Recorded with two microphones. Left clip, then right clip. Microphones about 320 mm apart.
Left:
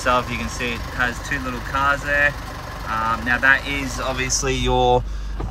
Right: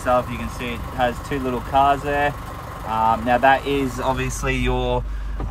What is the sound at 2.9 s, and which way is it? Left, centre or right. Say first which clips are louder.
Speech: right 3 dB; right.